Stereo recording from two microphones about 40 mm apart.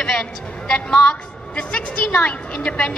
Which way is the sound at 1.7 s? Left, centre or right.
Left.